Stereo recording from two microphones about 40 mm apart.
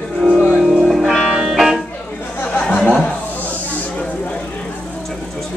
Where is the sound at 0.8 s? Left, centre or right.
Centre.